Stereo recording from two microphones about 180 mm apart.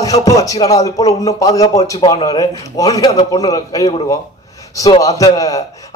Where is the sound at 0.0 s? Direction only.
20° left (ahead or behind).